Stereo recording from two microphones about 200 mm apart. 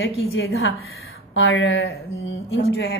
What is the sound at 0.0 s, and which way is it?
A woman's voice, 75° left (ahead or behind).